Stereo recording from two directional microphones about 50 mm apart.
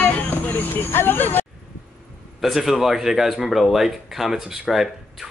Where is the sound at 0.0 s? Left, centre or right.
Left.